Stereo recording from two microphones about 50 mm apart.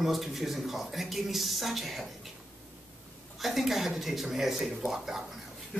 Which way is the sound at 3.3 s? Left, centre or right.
Centre.